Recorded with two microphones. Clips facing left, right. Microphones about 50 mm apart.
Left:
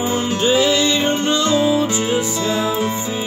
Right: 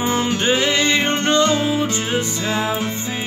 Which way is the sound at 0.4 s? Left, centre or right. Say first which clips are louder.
Left 5 dB; right.